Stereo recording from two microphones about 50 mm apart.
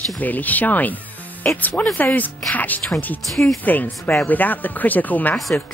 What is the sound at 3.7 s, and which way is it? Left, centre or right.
Speech, left.